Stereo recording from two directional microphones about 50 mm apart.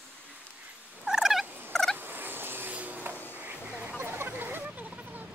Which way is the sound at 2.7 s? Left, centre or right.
Right.